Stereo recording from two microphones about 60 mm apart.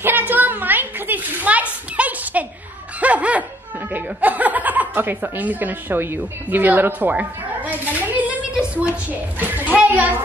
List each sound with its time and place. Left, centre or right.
0.0 s a sound: right
3.0 s laughter: right
3.9 s chuckle: right